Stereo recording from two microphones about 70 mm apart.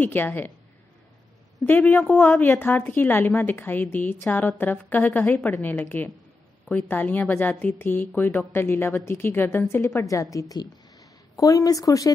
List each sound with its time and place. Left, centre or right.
0.0 s a woman's voice: left
1.9 s a woman's voice: left
2.5 s a woman's voice: left
10.5 s speech: left